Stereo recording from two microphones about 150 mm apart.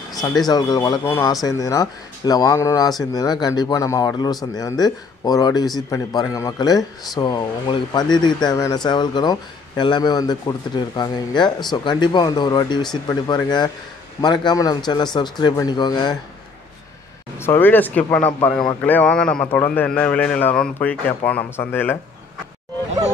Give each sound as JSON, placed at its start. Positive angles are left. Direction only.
{"t": 0.5, "sound": "speech", "side_deg": 25}
{"t": 17.4, "sound": "a man's voice", "side_deg": 15}